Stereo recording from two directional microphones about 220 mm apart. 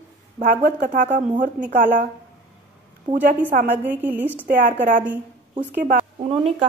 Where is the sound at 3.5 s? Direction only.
40° right (ahead or behind).